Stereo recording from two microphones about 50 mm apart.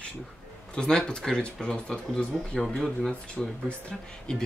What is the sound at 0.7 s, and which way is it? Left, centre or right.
Speech, centre.